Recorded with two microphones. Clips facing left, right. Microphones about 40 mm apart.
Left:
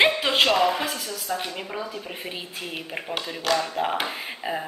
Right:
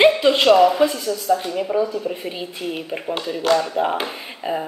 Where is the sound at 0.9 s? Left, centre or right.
Centre.